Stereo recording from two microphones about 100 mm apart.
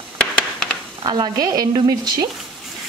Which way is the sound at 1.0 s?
50° right (ahead or behind).